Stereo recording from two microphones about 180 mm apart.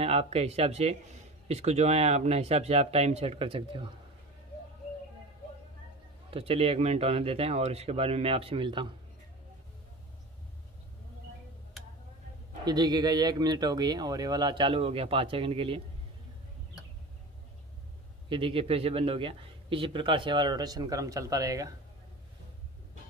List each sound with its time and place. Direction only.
0.0 s speech: 35° right (ahead or behind)
6.3 s speech: 30° right (ahead or behind)
12.6 s a man's voice: 20° right (ahead or behind)
18.3 s a man's voice: 30° right (ahead or behind)